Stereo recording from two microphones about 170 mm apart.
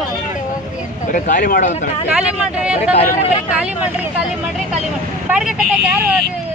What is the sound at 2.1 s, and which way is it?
Speech, 5° right (ahead or behind).